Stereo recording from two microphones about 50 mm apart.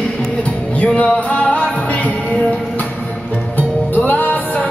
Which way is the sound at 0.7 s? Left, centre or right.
Left.